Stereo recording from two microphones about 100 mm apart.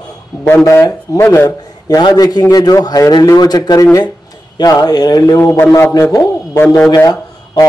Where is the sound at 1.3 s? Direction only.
30° left (ahead or behind).